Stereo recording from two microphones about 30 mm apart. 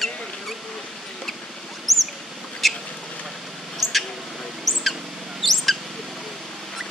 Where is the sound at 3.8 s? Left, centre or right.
Centre.